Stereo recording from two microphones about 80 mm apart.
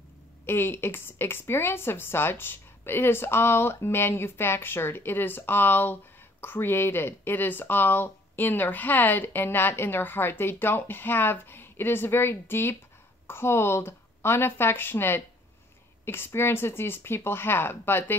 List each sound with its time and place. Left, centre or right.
0.5 s speech: left
16.3 s speech: left